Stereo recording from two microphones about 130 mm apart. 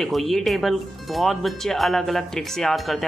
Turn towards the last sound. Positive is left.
turn(degrees=0)  # may be behind; listen again after turning